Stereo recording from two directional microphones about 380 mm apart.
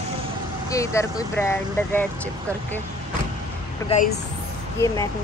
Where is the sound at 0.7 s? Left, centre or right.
Centre.